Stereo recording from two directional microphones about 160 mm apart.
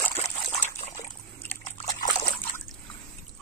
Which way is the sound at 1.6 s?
50° left (ahead or behind).